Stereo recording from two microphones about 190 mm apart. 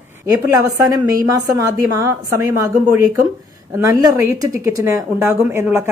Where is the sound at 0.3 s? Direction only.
20° right (ahead or behind).